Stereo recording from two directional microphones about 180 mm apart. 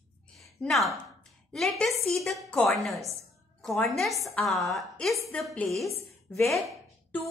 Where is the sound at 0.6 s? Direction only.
Centre (ahead or behind).